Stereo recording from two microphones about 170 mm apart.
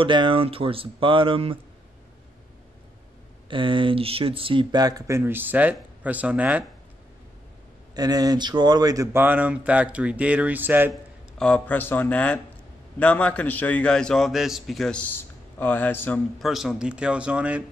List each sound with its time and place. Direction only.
0.0 s speech: 30° right (ahead or behind)
3.4 s speech: 30° right (ahead or behind); by 6.6 s 10° right (ahead or behind)
7.9 s speech: 25° right (ahead or behind)
10.9 s a man's voice: 5° left (ahead or behind)
16.3 s speech: centre (ahead or behind)